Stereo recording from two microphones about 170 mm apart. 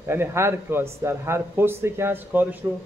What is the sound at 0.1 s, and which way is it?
Speech, 15° right (ahead or behind).